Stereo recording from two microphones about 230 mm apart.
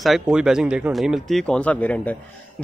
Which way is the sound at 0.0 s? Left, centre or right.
Centre.